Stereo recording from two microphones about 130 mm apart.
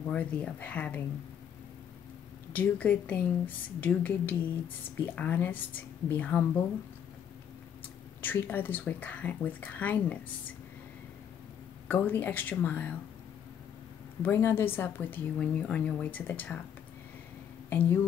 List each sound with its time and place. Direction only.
0.1 s a woman's voice: 10° left (ahead or behind)
2.5 s a woman's voice: 10° left (ahead or behind)
8.2 s a woman's voice: 15° left (ahead or behind)
11.9 s a woman's voice: 15° left (ahead or behind)
14.2 s a woman's voice: 20° left (ahead or behind)
17.6 s a woman's voice: 15° left (ahead or behind)